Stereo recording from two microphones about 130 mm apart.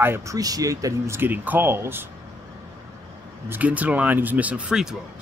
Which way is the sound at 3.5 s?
10° right (ahead or behind).